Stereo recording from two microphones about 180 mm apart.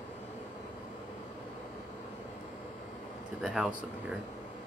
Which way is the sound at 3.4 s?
Centre (ahead or behind).